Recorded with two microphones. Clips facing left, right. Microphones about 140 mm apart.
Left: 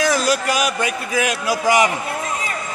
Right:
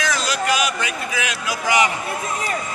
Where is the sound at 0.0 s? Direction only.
45° left (ahead or behind).